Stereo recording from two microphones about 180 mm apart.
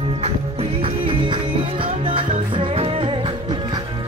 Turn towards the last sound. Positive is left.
turn(degrees=-30)  # may be behind; listen again after turning